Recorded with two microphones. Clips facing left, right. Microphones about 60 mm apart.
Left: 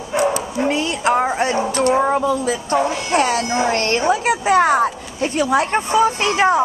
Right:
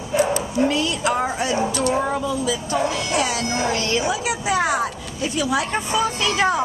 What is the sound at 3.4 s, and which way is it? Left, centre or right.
Speech, left.